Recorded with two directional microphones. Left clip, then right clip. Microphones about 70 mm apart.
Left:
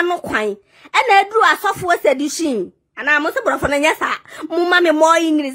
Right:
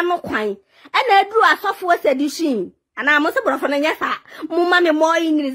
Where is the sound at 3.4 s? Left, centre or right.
Left.